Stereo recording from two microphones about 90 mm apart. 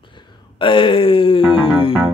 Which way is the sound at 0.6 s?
70° left (ahead or behind).